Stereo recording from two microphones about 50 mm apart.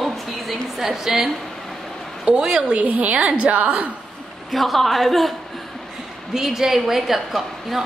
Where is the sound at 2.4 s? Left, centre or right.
Centre.